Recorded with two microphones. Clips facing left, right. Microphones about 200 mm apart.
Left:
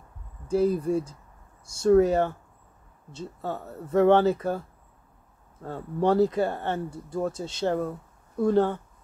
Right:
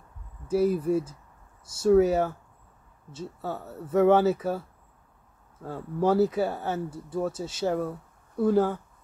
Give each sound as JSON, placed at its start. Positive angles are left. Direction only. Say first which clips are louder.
{"t": 0.5, "sound": "speech", "louder": "even", "side_deg": -5}